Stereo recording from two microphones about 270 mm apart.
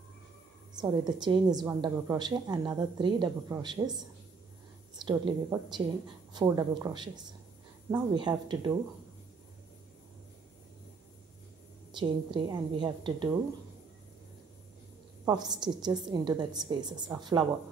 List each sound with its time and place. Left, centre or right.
0.7 s a woman's voice: centre
4.9 s a woman's voice: centre
12.0 s a woman's voice: centre
15.2 s a woman's voice: centre